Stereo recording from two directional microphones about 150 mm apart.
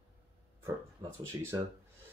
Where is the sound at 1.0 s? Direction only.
25° right (ahead or behind).